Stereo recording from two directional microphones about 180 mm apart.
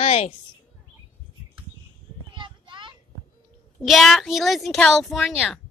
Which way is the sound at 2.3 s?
25° right (ahead or behind).